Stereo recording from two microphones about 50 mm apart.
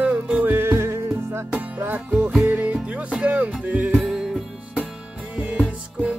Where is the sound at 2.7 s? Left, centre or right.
Right.